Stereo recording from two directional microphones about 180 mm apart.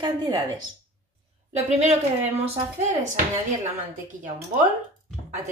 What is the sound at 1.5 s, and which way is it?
A woman's voice, 40° right (ahead or behind).